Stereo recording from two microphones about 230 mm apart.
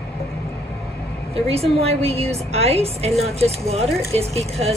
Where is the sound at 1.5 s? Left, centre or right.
Right.